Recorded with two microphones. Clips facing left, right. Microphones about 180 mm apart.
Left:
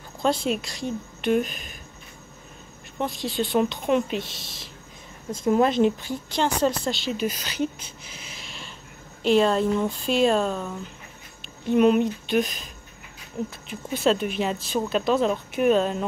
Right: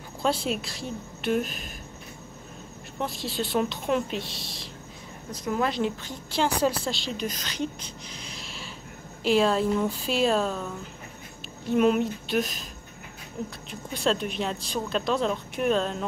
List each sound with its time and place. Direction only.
0.2 s speech: 5° right (ahead or behind)
3.0 s speech: centre (ahead or behind)
5.3 s speech: 25° left (ahead or behind)
6.3 s speech: 5° right (ahead or behind)
11.7 s speech: centre (ahead or behind)
13.7 s speech: 5° left (ahead or behind)